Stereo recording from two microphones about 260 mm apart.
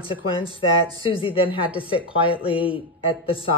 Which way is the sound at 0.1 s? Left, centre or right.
Centre.